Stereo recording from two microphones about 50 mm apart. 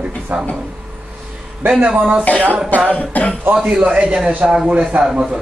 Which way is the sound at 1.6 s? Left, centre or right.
Right.